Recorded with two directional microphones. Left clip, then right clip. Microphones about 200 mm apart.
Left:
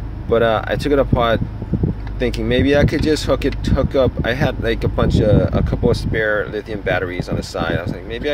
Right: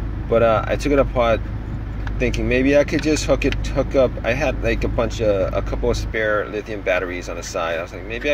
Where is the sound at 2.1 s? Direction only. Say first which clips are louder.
Left 1 dB; 90° left.